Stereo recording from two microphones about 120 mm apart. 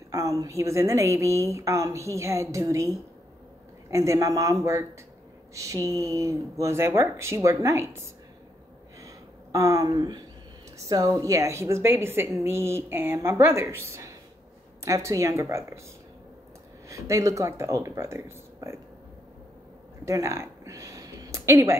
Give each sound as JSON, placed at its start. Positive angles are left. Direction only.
{"t": 0.1, "sound": "a woman's voice", "side_deg": -25}
{"t": 3.9, "sound": "a woman's voice", "side_deg": -25}
{"t": 9.0, "sound": "a sound", "side_deg": -25}
{"t": 10.9, "sound": "a woman's voice", "side_deg": -30}
{"t": 16.9, "sound": "a woman's voice", "side_deg": -25}
{"t": 20.1, "sound": "a sound", "side_deg": -25}